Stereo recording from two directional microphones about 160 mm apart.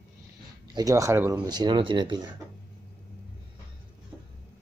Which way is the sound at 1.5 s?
25° right (ahead or behind).